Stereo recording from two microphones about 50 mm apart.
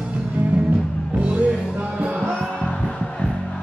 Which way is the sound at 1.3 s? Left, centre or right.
Right.